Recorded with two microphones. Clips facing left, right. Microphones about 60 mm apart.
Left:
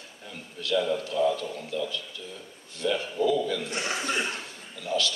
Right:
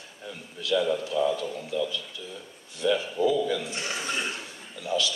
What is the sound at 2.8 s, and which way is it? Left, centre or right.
Speech, centre.